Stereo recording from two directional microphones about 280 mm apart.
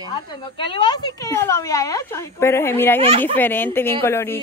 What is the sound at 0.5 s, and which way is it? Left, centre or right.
A woman's voice, centre.